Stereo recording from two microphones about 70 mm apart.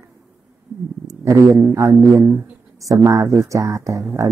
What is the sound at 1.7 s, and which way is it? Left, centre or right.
Speech, right.